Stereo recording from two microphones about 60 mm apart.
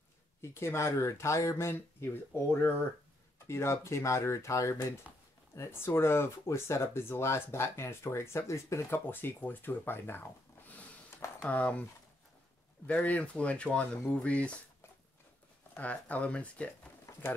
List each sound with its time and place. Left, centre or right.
0.4 s speech: left
5.1 s speech: right
5.7 s speech: left
8.9 s speech: left
11.4 s speech: left
12.8 s speech: left
15.7 s speech: left